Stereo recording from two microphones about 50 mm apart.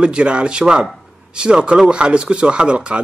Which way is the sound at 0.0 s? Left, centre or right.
Right.